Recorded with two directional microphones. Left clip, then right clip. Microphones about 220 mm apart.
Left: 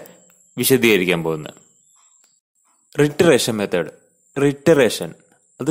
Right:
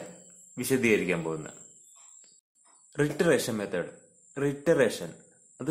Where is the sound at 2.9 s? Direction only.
35° left (ahead or behind).